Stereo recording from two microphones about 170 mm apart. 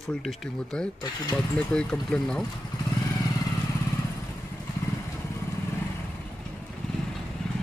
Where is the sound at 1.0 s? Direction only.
25° left (ahead or behind).